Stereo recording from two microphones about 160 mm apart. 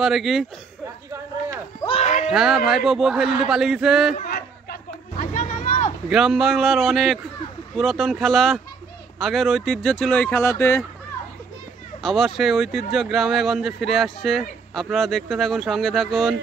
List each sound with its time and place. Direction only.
0.0 s speech: centre (ahead or behind)
1.9 s a sound: 45° left (ahead or behind)
2.3 s speech: centre (ahead or behind)
5.1 s a sound: 50° left (ahead or behind)
6.0 s speech: 5° right (ahead or behind); by 10.8 s 15° left (ahead or behind)
12.0 s speech: centre (ahead or behind)